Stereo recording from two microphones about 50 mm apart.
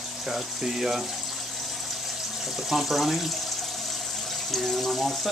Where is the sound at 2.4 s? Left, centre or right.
Centre.